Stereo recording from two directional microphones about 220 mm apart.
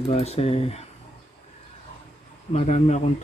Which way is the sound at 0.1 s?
30° left (ahead or behind).